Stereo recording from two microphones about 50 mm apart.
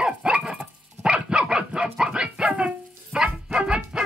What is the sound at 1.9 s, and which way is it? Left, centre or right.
Music, centre.